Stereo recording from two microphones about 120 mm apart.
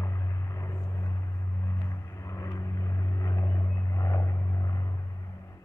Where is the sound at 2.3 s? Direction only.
25° left (ahead or behind).